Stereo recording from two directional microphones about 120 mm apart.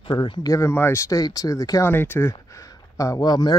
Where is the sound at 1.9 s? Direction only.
15° left (ahead or behind).